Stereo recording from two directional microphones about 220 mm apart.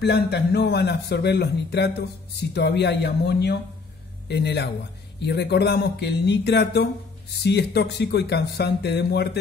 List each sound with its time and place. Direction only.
0.0 s speech: 50° left (ahead or behind)